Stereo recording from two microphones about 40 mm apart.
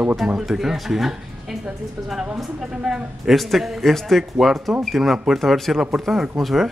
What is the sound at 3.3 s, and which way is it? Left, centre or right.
Speech, centre.